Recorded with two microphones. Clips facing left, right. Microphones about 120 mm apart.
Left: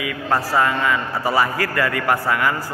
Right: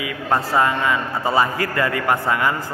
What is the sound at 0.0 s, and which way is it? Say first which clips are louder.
A man's voice: even; 20° right (ahead or behind).